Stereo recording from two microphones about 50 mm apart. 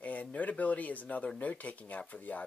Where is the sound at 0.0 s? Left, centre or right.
Left.